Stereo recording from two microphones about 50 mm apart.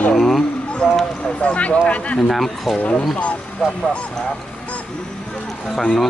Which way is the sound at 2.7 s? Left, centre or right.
Left.